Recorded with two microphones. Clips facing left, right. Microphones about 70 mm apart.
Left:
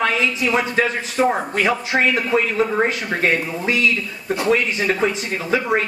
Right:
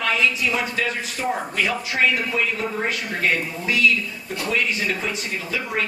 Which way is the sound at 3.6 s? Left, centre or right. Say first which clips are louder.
Left 1 dB; left.